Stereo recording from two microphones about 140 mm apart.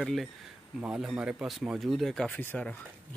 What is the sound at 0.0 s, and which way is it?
Speech, centre (ahead or behind).